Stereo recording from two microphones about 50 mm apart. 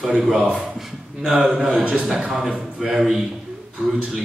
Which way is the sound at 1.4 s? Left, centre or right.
Centre.